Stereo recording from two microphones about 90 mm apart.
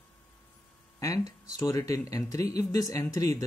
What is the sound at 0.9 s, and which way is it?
Speech, 40° left (ahead or behind).